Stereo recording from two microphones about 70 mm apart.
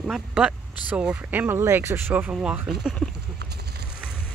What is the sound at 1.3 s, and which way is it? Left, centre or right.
Speech, right.